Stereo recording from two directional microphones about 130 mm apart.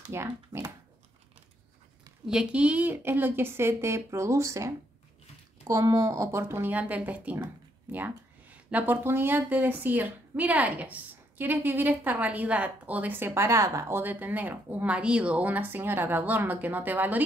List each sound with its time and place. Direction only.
0.1 s speech: 20° right (ahead or behind)
2.2 s speech: 5° right (ahead or behind)